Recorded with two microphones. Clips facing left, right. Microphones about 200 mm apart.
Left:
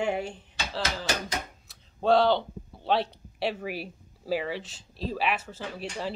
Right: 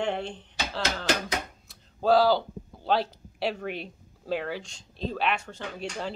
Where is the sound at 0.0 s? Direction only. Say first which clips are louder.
Left 1 dB; 10° left (ahead or behind).